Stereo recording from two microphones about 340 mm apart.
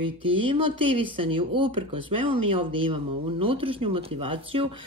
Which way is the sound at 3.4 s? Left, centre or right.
Centre.